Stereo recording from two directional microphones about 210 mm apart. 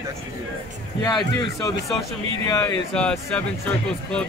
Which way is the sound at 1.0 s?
20° left (ahead or behind).